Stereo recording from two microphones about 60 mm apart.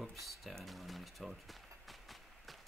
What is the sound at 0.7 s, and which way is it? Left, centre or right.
Run, centre.